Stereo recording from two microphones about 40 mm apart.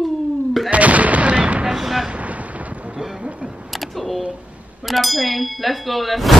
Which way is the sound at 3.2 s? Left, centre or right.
Right.